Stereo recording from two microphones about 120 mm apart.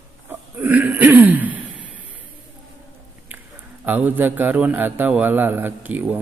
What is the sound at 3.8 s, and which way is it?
A man's voice, 15° right (ahead or behind).